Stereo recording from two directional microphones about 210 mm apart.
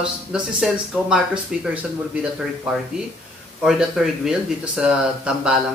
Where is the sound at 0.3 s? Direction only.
5° right (ahead or behind).